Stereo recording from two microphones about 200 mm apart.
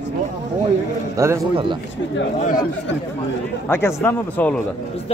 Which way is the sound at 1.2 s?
15° right (ahead or behind).